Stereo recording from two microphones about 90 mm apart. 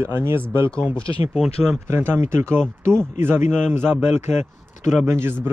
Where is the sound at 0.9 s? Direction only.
75° left (ahead or behind).